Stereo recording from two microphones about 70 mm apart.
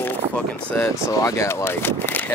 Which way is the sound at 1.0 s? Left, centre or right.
Left.